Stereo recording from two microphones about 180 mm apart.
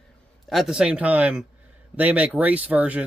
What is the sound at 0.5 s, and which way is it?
Speech, centre (ahead or behind).